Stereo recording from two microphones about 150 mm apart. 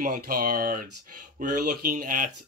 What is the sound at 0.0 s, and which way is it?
Speech, 70° right (ahead or behind).